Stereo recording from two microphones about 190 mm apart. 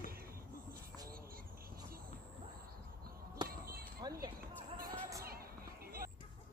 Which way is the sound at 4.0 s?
20° right (ahead or behind).